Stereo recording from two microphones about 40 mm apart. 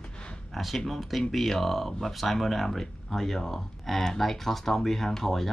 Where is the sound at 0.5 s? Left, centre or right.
Centre.